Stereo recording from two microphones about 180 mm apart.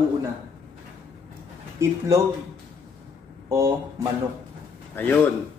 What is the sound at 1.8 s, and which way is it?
Speech, 15° right (ahead or behind).